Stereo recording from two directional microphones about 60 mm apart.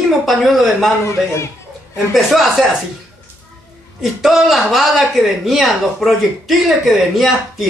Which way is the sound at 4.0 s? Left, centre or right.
Centre.